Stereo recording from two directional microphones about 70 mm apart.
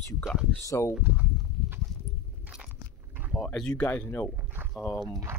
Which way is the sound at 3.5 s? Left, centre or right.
Centre.